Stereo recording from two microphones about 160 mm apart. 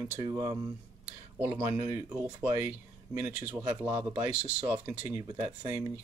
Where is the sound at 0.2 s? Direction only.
25° right (ahead or behind).